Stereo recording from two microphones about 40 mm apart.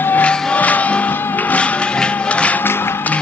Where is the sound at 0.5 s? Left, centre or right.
Left.